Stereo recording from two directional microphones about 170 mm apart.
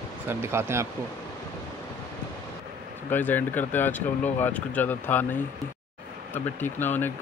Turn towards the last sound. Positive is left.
turn(degrees=10)  # may be behind; listen again after turning